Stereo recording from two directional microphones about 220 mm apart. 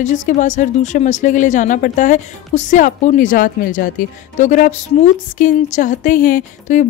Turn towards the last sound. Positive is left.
turn(degrees=35)  # may be behind; listen again after turning